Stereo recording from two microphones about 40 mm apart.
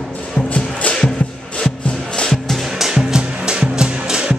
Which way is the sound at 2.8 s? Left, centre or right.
Centre.